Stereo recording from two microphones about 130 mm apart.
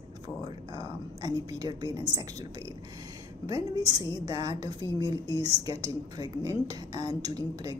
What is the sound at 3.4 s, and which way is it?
A woman's voice, 30° right (ahead or behind).